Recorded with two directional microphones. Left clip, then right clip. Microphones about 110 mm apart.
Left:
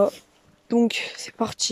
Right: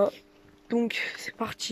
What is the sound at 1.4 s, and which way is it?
Speech, 45° left (ahead or behind).